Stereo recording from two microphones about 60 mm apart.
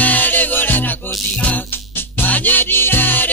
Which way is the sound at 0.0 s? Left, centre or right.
Left.